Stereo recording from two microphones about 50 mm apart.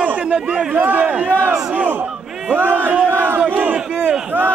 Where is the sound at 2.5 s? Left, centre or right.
Right.